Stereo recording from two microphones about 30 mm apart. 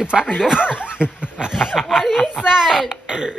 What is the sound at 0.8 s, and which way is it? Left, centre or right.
Dog, right.